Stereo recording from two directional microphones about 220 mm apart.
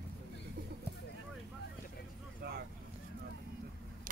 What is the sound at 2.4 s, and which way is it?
Vehicle, 45° right (ahead or behind).